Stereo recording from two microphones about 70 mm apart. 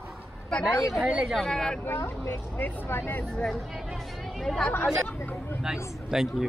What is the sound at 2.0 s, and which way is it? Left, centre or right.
Speech, left.